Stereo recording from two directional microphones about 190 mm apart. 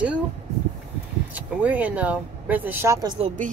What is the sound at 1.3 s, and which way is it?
Speech, 10° right (ahead or behind).